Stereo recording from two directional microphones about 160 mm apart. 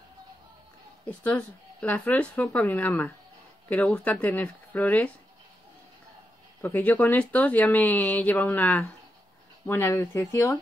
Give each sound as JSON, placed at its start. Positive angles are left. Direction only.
{"t": 1.0, "sound": "speech", "side_deg": 10}
{"t": 6.6, "sound": "speech", "side_deg": 10}
{"t": 9.7, "sound": "speech", "side_deg": 15}